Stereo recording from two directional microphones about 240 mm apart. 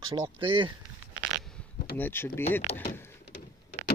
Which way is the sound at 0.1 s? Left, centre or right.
Right.